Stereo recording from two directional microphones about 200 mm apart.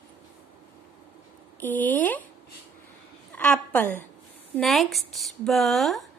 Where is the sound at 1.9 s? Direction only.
10° left (ahead or behind).